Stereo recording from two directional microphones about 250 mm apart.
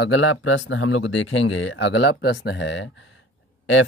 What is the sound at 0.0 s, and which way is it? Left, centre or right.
Speech, left.